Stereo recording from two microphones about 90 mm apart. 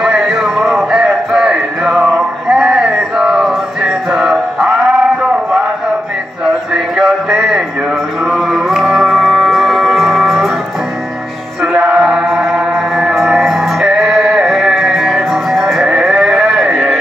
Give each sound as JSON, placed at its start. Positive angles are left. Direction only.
{"t": 0.0, "sound": "a sound", "side_deg": -5}
{"t": 8.2, "sound": "music", "side_deg": -5}
{"t": 11.6, "sound": "music", "side_deg": -10}